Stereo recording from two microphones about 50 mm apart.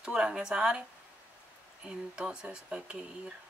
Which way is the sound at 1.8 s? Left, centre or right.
Centre.